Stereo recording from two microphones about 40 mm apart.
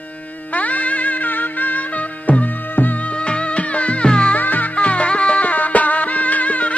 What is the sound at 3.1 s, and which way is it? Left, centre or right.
Music, left.